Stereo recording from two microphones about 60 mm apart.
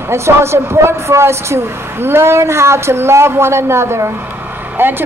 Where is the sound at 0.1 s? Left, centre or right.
Right.